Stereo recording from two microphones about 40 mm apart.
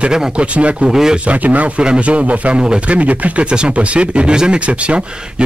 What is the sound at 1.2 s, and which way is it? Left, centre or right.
A man's voice, right.